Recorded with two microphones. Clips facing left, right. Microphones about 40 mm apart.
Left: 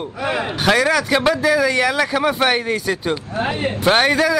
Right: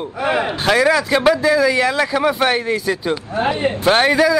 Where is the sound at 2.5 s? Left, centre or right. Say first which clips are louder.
Right 1 dB; centre.